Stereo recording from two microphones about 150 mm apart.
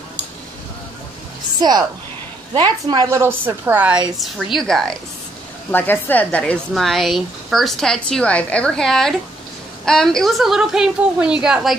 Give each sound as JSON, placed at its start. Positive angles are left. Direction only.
{"t": 1.6, "sound": "a woman's voice", "side_deg": -25}
{"t": 4.6, "sound": "speech", "side_deg": 5}